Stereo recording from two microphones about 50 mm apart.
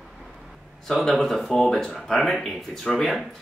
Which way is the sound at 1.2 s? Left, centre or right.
Centre.